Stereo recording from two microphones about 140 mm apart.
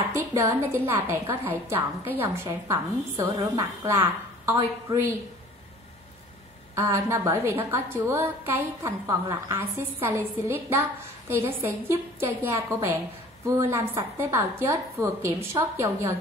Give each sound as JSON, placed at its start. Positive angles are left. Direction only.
{"t": 0.1, "sound": "a woman's voice", "side_deg": -20}
{"t": 6.7, "sound": "a woman's voice", "side_deg": -20}